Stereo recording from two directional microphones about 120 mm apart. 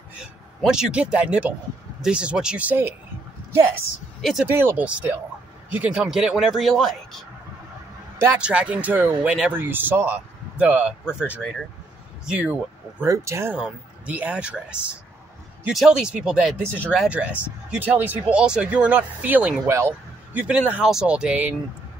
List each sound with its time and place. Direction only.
0.2 s speech: 5° right (ahead or behind)
4.2 s speech: centre (ahead or behind)
4.5 s a man's voice: 20° right (ahead or behind); by 7.2 s centre (ahead or behind)
8.4 s speech: 10° right (ahead or behind)
12.3 s speech: 10° right (ahead or behind)
13.0 s speech: 25° right (ahead or behind)
13.6 s speech: 10° right (ahead or behind)
20.3 s speech: 10° right (ahead or behind)